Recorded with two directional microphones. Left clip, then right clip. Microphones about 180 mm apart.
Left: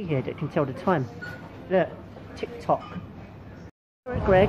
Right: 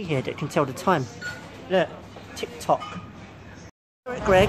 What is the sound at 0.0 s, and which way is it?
Speech, 20° right (ahead or behind).